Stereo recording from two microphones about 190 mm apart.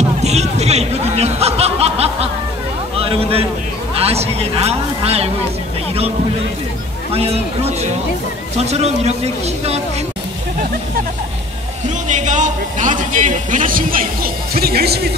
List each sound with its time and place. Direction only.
0.2 s speech: 35° right (ahead or behind)
7.1 s speech: 30° right (ahead or behind)
12.1 s speech: 40° right (ahead or behind)